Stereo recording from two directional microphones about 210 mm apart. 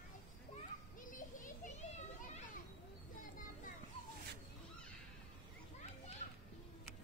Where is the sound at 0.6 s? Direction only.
40° left (ahead or behind).